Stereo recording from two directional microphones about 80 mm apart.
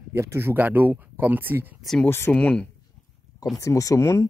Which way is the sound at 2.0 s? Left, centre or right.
Left.